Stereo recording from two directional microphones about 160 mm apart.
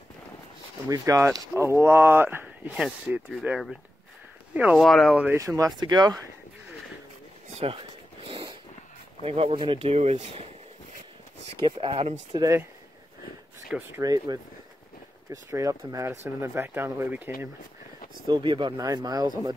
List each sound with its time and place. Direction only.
0.8 s speech: 20° right (ahead or behind); by 3.7 s centre (ahead or behind)
4.6 s speech: 10° right (ahead or behind)
4.8 s speech: centre (ahead or behind)
5.4 s speech: 20° right (ahead or behind)
7.5 s a sound: 35° right (ahead or behind)
9.2 s speech: 35° right (ahead or behind)
11.6 s speech: 35° right (ahead or behind)
12.4 s speech: 20° right (ahead or behind)
13.7 s speech: 10° right (ahead or behind)
14.0 s speech: 25° right (ahead or behind)
15.5 s speech: 20° right (ahead or behind)
18.2 s speech: 30° right (ahead or behind)